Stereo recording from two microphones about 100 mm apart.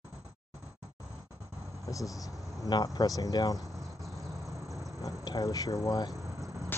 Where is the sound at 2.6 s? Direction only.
40° left (ahead or behind).